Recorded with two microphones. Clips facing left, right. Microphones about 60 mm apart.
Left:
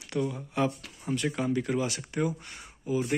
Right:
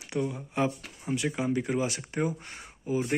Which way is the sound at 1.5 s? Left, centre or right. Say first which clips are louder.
Right 1 dB; right.